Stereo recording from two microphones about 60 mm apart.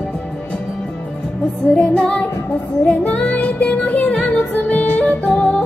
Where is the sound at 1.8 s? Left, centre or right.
Centre.